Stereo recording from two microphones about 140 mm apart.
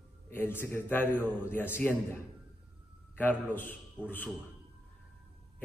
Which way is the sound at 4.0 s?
10° right (ahead or behind).